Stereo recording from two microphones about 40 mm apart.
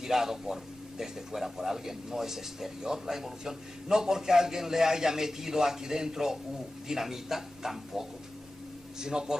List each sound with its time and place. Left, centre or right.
0.0 s a man's voice: centre